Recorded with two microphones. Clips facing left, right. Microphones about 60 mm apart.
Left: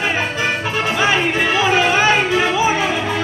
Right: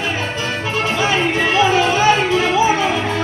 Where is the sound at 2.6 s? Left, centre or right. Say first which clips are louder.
Right 1 dB; left.